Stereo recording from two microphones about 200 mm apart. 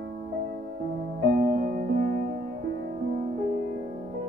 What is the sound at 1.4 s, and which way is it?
Music, 40° right (ahead or behind).